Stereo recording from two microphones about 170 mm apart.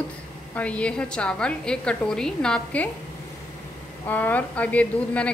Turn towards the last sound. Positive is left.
turn(degrees=5)  # may be behind; listen again after turning